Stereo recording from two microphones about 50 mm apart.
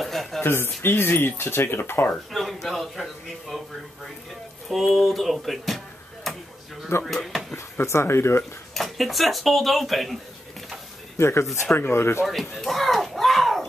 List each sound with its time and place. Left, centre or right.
0.0 s a sound: centre
0.4 s speech: left
2.3 s a man's voice: centre
4.6 s speech: centre
7.1 s speech: centre
7.8 s speech: left
8.7 s speech: centre
11.1 s speech: left
11.6 s speech: left
11.9 s speech: left
12.3 s speech: centre